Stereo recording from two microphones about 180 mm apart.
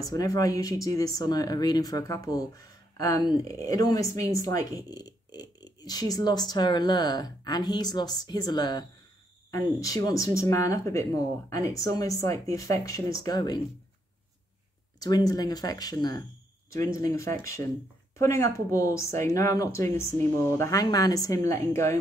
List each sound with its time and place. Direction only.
0.0 s speech: 20° left (ahead or behind)
15.0 s speech: 20° left (ahead or behind)